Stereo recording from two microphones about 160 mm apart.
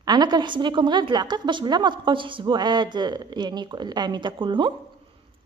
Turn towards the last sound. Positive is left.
turn(degrees=-30)  # may be behind; listen again after turning